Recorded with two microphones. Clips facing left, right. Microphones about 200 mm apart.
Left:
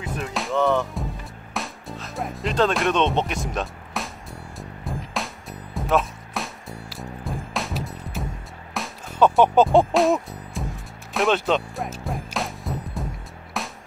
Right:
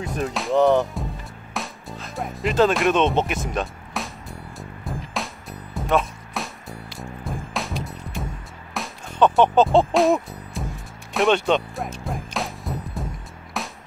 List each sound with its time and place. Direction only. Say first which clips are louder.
0.3 s music: right 3 dB; centre (ahead or behind)
0.6 s music: right 4 dB; 35° right (ahead or behind)
1.5 s music: even; centre (ahead or behind)
9.9 s music: right 1 dB; centre (ahead or behind)